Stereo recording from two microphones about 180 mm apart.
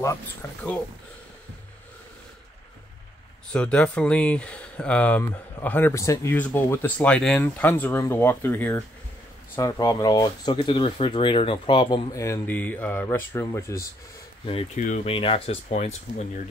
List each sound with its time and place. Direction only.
0.0 s speech: 15° left (ahead or behind)
3.5 s speech: 5° left (ahead or behind)
14.4 s speech: 35° left (ahead or behind)